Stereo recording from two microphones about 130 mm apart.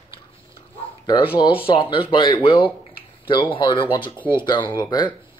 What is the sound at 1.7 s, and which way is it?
Speech, 40° left (ahead or behind).